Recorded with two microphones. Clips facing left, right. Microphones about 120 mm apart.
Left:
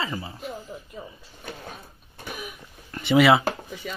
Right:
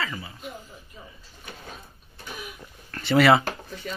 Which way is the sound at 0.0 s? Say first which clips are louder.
Left 2 dB; 30° left (ahead or behind).